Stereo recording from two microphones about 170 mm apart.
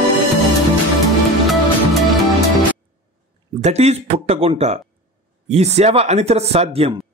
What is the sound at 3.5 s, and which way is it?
Speech, 40° right (ahead or behind).